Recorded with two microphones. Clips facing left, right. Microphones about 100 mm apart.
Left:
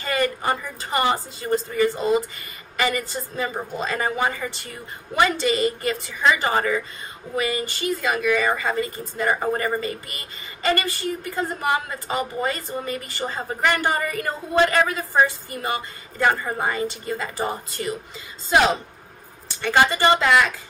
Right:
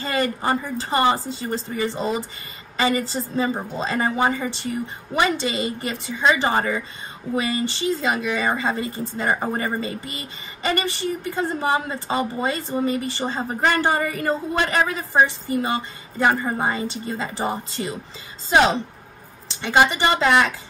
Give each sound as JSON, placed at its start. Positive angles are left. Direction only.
{"t": 0.0, "sound": "a woman's voice", "side_deg": -25}